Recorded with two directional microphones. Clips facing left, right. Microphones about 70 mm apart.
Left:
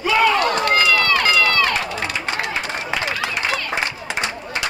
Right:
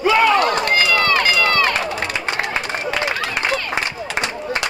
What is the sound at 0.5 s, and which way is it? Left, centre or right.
Run, right.